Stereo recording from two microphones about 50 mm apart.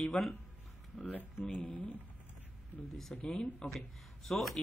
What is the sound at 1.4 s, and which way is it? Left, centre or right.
Speech, left.